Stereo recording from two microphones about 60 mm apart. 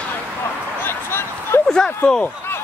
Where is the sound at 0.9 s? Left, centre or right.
Left.